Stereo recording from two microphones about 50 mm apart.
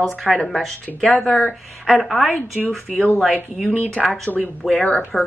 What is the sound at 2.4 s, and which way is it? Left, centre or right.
Speech, left.